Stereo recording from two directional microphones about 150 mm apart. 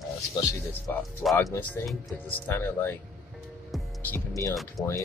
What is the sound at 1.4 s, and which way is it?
Speech, 15° left (ahead or behind).